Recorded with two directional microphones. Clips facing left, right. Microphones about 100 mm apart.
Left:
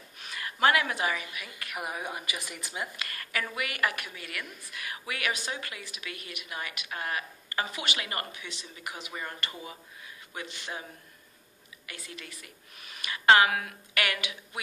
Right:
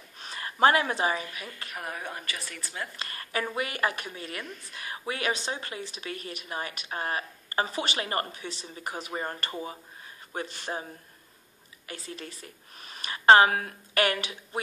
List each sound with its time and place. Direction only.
0.2 s speech: 35° right (ahead or behind)
1.8 s speech: 10° left (ahead or behind)
3.0 s a woman's voice: 30° right (ahead or behind)